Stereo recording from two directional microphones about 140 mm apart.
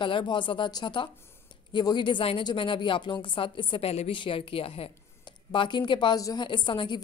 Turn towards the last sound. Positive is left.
turn(degrees=35)  # may be behind; listen again after turning